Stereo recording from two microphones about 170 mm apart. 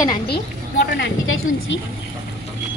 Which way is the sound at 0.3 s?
75° left (ahead or behind).